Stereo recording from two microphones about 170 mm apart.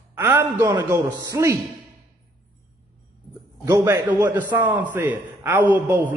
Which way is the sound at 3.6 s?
20° right (ahead or behind).